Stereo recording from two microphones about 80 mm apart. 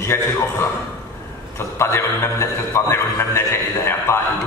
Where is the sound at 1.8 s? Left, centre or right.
Left.